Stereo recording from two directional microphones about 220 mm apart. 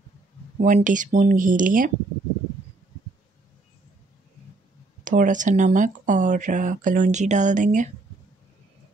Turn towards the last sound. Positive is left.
turn(degrees=-35)  # may be behind; listen again after turning